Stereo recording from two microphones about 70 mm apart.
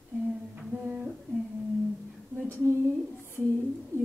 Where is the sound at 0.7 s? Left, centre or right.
Right.